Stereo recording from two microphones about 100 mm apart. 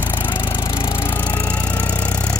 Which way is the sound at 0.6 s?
55° left (ahead or behind).